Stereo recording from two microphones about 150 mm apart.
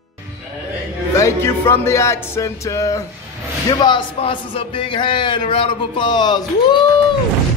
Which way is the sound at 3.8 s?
30° left (ahead or behind).